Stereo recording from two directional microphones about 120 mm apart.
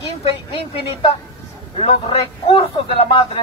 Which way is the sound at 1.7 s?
55° left (ahead or behind).